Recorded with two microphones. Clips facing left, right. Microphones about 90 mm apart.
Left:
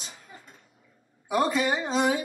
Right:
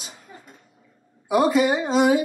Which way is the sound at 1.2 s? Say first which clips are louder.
Right 6 dB; 10° right (ahead or behind).